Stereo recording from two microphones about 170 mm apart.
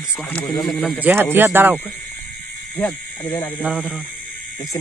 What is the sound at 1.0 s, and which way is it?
Speech, 10° right (ahead or behind).